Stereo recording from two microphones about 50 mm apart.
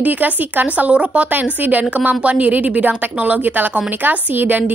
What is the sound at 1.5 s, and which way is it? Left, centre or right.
A woman's voice, right.